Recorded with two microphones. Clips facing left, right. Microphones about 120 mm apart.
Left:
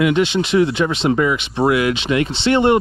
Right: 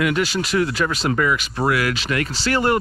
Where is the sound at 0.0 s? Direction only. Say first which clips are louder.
Left 5 dB; 25° left (ahead or behind).